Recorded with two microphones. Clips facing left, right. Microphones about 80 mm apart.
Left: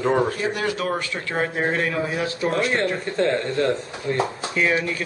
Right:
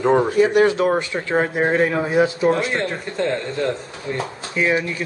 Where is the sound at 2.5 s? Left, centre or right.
Centre.